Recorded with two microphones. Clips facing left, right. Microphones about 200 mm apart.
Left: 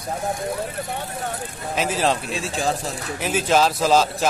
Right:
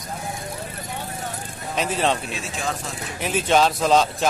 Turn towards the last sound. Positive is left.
turn(degrees=0)  # may be behind; listen again after turning